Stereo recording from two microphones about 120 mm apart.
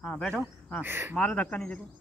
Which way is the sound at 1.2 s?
10° left (ahead or behind).